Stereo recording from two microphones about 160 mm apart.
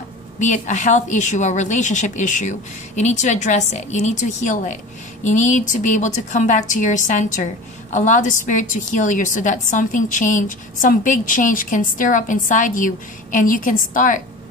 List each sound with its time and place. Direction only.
0.4 s a woman's voice: 50° left (ahead or behind)